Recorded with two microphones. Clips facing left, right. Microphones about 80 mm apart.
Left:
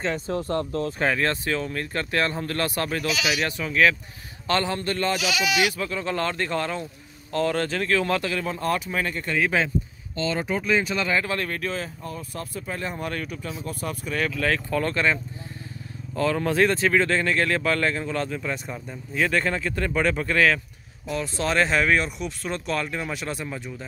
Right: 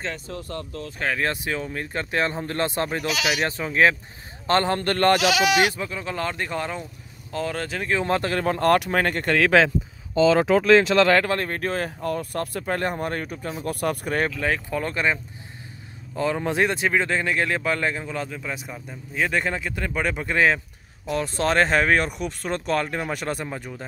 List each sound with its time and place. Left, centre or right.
0.3 s speech: left
1.1 s speech: centre; by 3.9 s right
4.5 s speech: right
5.5 s speech: right
5.8 s speech: centre
7.9 s speech: right
8.2 s speech: right
11.2 s speech: right
12.0 s speech: right
12.9 s speech: right
13.7 s speech: right
14.4 s speech: centre
16.2 s speech: centre
21.1 s speech: right